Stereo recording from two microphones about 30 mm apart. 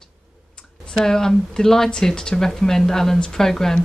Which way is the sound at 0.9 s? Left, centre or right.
Centre.